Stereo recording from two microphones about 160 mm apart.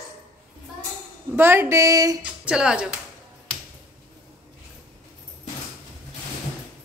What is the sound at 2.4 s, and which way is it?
Speech, 5° right (ahead or behind).